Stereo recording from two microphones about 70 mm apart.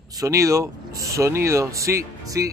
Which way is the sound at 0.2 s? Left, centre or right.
Right.